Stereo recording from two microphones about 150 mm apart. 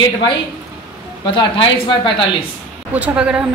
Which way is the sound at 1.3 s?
35° left (ahead or behind).